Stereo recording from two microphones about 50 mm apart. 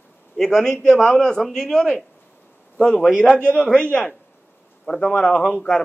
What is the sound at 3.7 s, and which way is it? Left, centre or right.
Speech, left.